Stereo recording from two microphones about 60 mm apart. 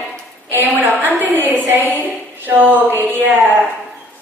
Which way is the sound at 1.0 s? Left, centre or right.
Right.